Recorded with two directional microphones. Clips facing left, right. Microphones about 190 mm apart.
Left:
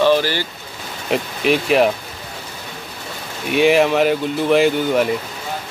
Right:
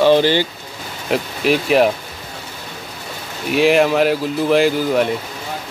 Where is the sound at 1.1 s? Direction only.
Centre (ahead or behind).